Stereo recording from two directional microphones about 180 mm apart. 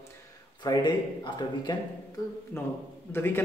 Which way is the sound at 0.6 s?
25° left (ahead or behind).